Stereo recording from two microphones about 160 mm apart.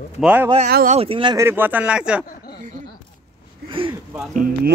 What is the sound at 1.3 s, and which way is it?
Speech, 15° right (ahead or behind).